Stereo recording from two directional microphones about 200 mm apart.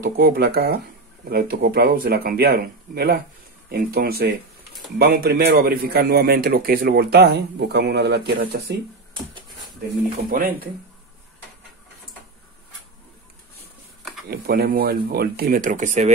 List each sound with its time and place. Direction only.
0.0 s a man's voice: 45° right (ahead or behind)
10.3 s a man's voice: 45° right (ahead or behind)
14.3 s a man's voice: 50° right (ahead or behind)